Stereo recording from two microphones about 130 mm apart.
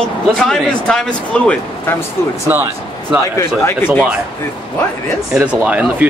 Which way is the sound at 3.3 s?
15° left (ahead or behind).